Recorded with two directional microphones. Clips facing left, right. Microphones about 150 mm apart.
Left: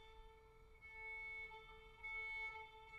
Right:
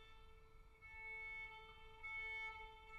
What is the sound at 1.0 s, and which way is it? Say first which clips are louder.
Violin: left 1 dB; 35° left (ahead or behind).